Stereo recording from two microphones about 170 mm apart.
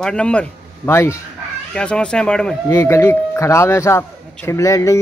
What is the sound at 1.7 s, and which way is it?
Speech, 5° left (ahead or behind).